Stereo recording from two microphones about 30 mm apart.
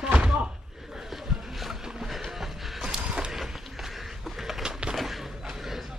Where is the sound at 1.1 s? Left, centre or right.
Centre.